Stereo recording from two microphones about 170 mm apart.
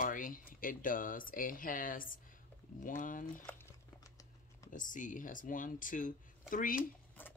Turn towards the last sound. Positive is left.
turn(degrees=10)  # may be behind; listen again after turning